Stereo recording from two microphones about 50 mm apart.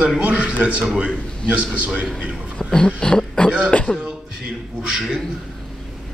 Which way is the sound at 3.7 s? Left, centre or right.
Left.